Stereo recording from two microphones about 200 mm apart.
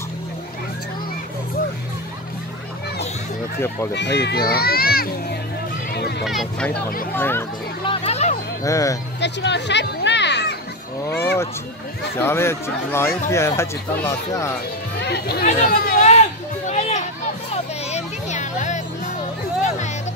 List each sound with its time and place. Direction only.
3.9 s a child's voice: 55° left (ahead or behind)
5.9 s a sound: 55° left (ahead or behind)
6.2 s speech: centre (ahead or behind)
7.8 s a sound: 25° left (ahead or behind)
8.6 s speech: 15° left (ahead or behind)
9.2 s music: 60° left (ahead or behind)
12.2 s speech: 10° left (ahead or behind)
15.0 s speech: 55° left (ahead or behind)
15.4 s speech: 35° left (ahead or behind)
15.7 s a sound: 50° left (ahead or behind)
16.0 s children playing: 35° left (ahead or behind)